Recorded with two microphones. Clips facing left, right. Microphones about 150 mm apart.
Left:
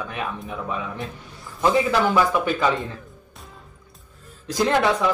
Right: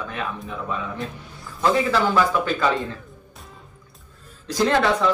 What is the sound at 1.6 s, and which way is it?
Speech, 15° left (ahead or behind).